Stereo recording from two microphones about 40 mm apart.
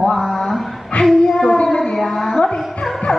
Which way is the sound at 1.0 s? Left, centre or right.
Centre.